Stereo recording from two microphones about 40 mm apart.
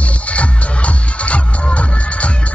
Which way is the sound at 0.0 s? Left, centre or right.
Left.